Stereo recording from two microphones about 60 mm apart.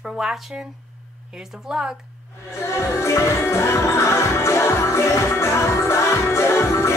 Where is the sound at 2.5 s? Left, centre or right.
Left.